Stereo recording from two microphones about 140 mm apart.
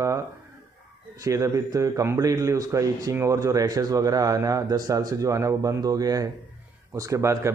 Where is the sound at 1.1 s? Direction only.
25° right (ahead or behind).